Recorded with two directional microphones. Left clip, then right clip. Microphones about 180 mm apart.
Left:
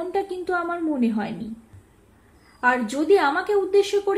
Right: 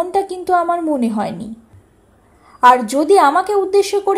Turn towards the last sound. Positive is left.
turn(degrees=-25)  # may be behind; listen again after turning